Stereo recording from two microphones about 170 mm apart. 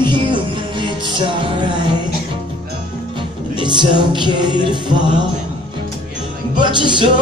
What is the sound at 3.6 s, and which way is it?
Music, 30° right (ahead or behind).